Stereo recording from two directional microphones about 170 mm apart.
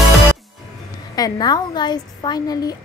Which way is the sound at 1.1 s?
25° left (ahead or behind).